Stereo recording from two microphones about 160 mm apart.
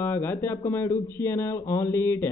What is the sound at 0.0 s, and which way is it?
Speech, 15° left (ahead or behind).